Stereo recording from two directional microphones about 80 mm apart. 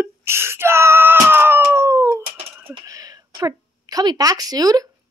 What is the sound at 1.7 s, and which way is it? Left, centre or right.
Cat, right.